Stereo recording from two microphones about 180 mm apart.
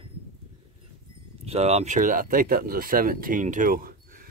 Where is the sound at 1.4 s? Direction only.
35° right (ahead or behind); by 4.2 s 55° right (ahead or behind).